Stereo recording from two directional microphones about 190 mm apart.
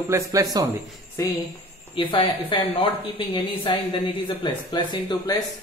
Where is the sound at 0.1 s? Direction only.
20° right (ahead or behind).